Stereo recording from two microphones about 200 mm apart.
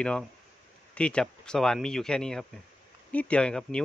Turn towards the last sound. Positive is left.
turn(degrees=5)  # may be behind; listen again after turning